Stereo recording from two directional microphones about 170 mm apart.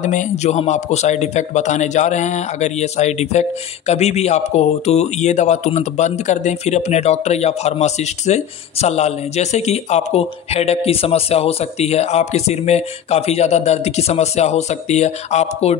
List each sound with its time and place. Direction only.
0.0 s a man's voice: 45° left (ahead or behind)